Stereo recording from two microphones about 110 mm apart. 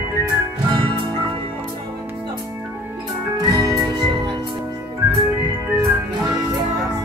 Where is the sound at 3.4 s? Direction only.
30° right (ahead or behind).